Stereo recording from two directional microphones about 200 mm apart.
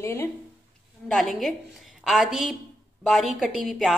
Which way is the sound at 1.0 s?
Centre (ahead or behind).